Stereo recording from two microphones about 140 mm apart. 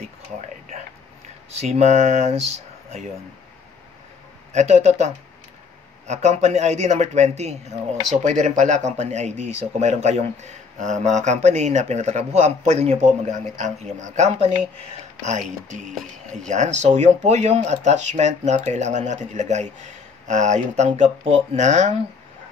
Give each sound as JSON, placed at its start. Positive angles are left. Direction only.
{"t": 1.5, "sound": "a man's voice", "side_deg": -50}
{"t": 4.5, "sound": "a man's voice", "side_deg": -50}
{"t": 16.4, "sound": "speech", "side_deg": -60}